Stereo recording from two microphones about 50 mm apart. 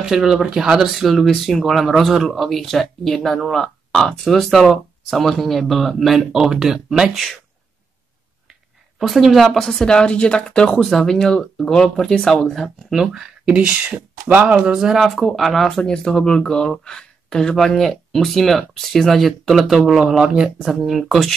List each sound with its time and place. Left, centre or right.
0.0 s speech: centre
8.5 s speech: centre
10.8 s speech: centre
13.0 s speech: centre
13.9 s a sound: right
14.6 s speech: centre
15.0 s speech: centre